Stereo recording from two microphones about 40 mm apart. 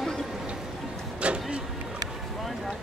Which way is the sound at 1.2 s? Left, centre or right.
Right.